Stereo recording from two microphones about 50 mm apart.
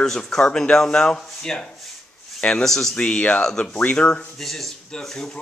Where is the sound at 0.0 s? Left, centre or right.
Centre.